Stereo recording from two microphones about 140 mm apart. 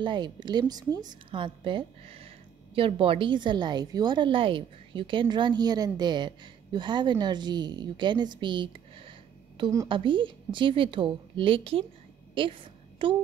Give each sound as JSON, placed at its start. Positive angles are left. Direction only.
{"t": 0.0, "sound": "a woman's voice", "side_deg": -35}
{"t": 9.6, "sound": "a woman's voice", "side_deg": -25}
{"t": 9.8, "sound": "a woman's voice", "side_deg": -35}
{"t": 12.4, "sound": "a sound", "side_deg": -40}